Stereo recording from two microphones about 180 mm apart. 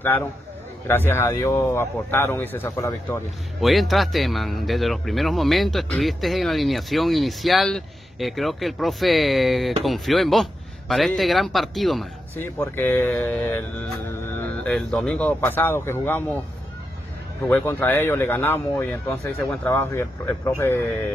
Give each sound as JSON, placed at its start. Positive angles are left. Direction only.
{"t": 0.8, "sound": "speech", "side_deg": 10}
{"t": 3.6, "sound": "speech", "side_deg": 0}
{"t": 12.4, "sound": "speech", "side_deg": 10}
{"t": 17.5, "sound": "speech", "side_deg": 10}